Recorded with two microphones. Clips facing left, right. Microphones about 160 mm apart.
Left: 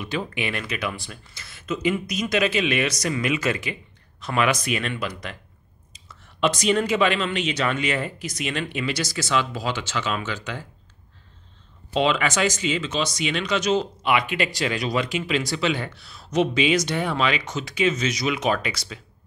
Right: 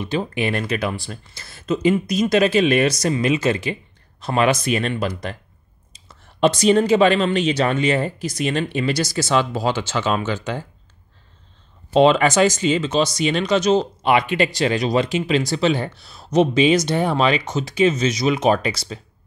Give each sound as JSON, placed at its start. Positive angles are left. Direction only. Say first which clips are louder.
{"t": 0.0, "sound": "speech", "louder": "right 5 dB", "side_deg": -30}
{"t": 11.9, "sound": "speech", "louder": "right 8 dB", "side_deg": -40}